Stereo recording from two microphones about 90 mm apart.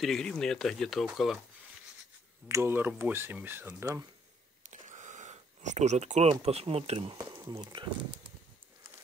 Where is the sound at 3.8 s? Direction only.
40° right (ahead or behind).